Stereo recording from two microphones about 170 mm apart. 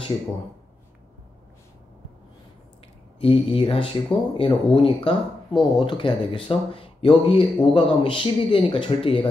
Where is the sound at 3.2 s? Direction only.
35° left (ahead or behind).